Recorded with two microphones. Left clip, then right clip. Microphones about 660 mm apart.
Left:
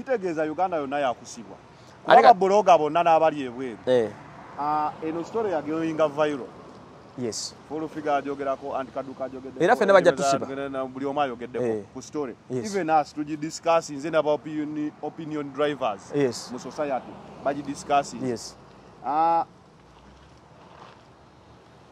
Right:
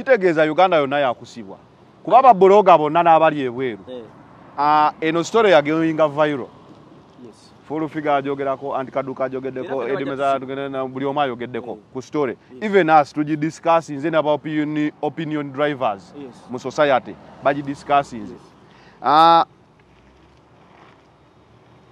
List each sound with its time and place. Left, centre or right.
0.0 s speech: right
4.6 s speech: right
5.8 s speech: right
7.7 s speech: right
10.1 s speech: right
14.7 s a man's voice: right
15.3 s speech: right
16.5 s speech: right
19.0 s speech: right